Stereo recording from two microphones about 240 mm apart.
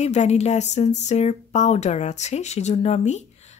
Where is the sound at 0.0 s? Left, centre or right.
Left.